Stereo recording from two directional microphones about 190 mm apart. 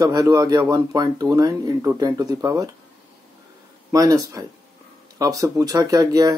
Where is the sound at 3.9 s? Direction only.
20° right (ahead or behind).